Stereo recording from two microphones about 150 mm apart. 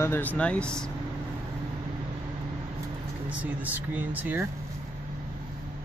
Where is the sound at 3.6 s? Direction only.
10° right (ahead or behind).